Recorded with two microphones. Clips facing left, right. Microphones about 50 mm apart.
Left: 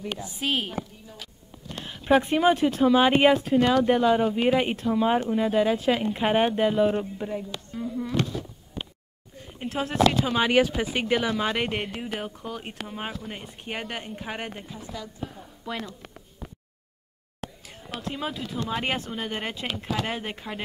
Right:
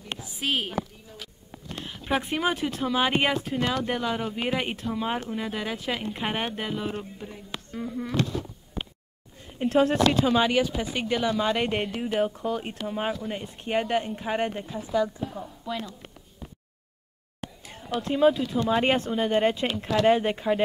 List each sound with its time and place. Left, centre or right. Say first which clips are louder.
0.4 s speech: even; centre
1.8 s speech: left 7 dB; centre
7.5 s speech: left 1 dB; centre
9.6 s speech: right 2 dB; centre
10.8 s speech: left 2 dB; left; by 14.7 s centre
14.9 s a woman's voice: right 13 dB; right
15.6 s speech: even; left
17.6 s speech: right 7 dB; centre